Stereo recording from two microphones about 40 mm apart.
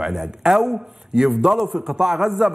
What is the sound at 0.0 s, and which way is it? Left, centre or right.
A man's voice, centre.